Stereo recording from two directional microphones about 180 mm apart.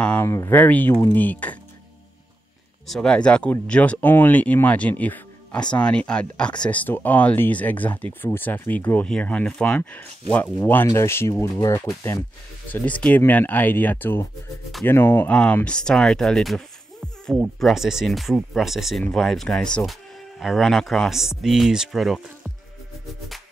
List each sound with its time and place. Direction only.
0.0 s speech: 10° left (ahead or behind)
2.9 s speech: 5° left (ahead or behind)